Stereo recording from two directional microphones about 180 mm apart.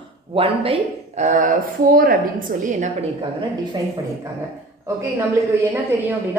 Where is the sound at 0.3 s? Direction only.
30° right (ahead or behind); by 2.9 s 50° right (ahead or behind).